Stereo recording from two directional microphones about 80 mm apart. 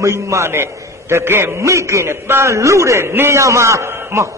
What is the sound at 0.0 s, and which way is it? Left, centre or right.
A man's voice, right.